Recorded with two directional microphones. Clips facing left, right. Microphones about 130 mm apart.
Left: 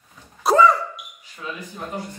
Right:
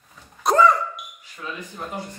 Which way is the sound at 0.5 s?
Centre (ahead or behind).